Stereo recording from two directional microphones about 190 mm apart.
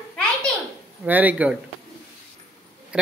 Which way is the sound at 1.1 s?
10° right (ahead or behind).